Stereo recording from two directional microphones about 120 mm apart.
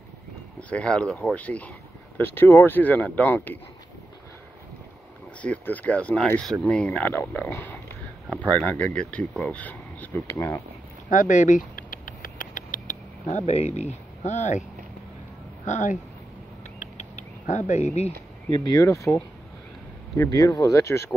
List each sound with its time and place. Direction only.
0.6 s speech: 10° left (ahead or behind)
5.4 s speech: 10° left (ahead or behind)
11.1 s speech: 90° left
12.1 s rodents: 90° left
15.6 s speech: 85° left
16.8 s a sound: 80° left
18.5 s speech: 35° left (ahead or behind)
20.2 s speech: 30° left (ahead or behind)